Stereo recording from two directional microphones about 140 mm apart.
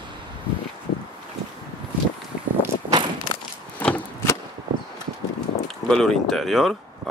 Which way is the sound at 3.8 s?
15° left (ahead or behind).